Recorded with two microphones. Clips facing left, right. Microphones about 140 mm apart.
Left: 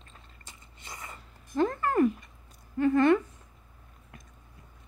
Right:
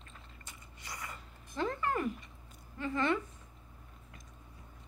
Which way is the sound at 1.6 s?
45° left (ahead or behind).